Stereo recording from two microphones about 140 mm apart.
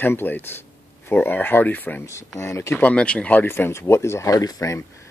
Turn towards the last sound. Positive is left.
turn(degrees=25)  # may be behind; listen again after turning